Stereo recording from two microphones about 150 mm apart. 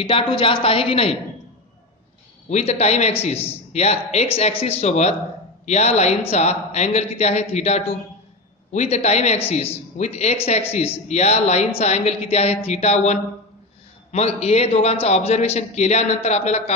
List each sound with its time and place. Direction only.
0.0 s a woman's voice: 35° left (ahead or behind)
2.5 s a man's voice: 50° left (ahead or behind)